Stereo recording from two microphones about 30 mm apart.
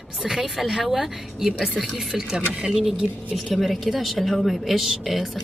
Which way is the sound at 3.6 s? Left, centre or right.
Centre.